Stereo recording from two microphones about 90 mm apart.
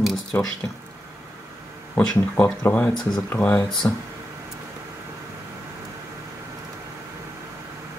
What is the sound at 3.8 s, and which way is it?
Speech, 30° left (ahead or behind).